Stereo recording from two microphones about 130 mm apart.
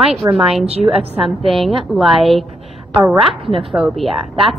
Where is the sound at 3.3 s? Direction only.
45° right (ahead or behind).